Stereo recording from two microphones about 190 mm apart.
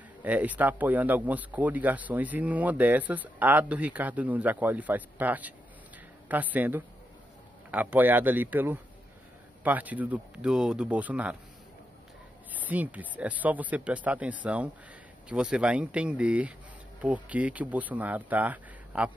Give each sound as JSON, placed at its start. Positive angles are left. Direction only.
{"t": 0.2, "sound": "speech", "side_deg": -10}
{"t": 12.5, "sound": "speech", "side_deg": -10}